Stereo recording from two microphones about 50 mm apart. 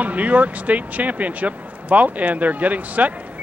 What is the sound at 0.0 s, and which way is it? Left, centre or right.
Speech, right.